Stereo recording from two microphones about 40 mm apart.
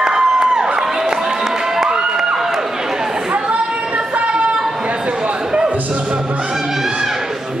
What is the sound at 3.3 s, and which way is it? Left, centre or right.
Singing, right.